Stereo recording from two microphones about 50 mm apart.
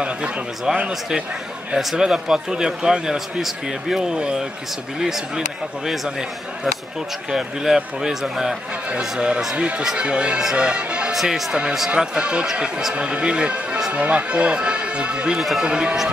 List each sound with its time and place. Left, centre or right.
0.7 s speech: centre
11.1 s speech: centre; by 15.3 s right
15.3 s speech: centre
15.6 s speech: centre